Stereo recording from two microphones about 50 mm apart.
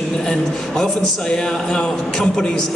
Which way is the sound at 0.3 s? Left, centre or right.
Centre.